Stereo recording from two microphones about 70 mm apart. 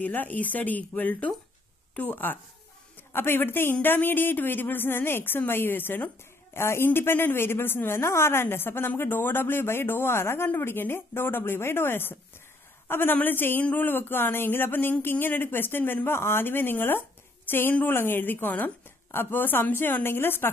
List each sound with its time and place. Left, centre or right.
0.0 s a woman's voice: left